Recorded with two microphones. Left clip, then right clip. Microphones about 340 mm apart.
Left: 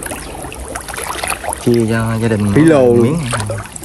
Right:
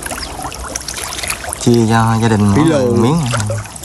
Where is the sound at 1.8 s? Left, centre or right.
Centre.